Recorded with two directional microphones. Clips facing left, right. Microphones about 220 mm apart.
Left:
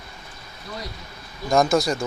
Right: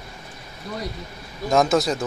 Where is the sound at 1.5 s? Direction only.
5° right (ahead or behind).